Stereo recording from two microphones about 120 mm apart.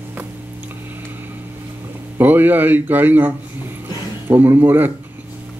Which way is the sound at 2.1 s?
15° right (ahead or behind).